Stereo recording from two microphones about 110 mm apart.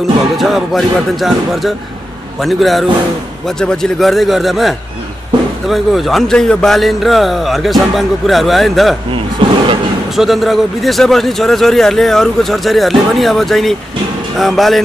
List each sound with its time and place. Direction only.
0.4 s a man's voice: centre (ahead or behind)
9.4 s speech: 50° right (ahead or behind)
10.1 s a man's voice: centre (ahead or behind)